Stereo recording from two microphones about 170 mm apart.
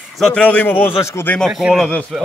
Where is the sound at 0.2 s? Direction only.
5° left (ahead or behind).